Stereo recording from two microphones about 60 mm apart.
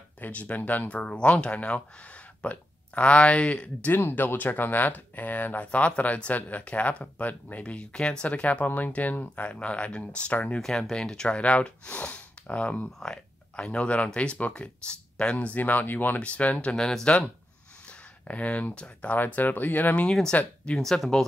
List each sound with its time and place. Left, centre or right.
0.2 s speech: left
4.1 s speech: left
10.6 s speech: centre
13.0 s a sound: centre
13.7 s speech: left
16.2 s speech: left
16.7 s speech: centre
17.8 s speech: left
20.1 s speech: centre